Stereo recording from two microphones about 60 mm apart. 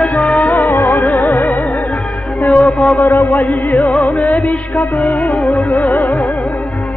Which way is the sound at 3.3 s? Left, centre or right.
Left.